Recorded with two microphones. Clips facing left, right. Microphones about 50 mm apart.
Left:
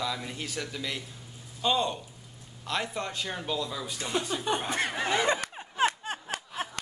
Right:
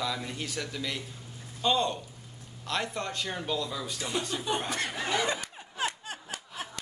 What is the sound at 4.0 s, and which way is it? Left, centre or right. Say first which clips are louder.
A man's voice: left 3 dB; centre.